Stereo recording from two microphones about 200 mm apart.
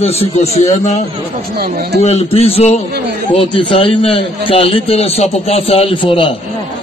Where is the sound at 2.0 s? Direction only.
30° left (ahead or behind).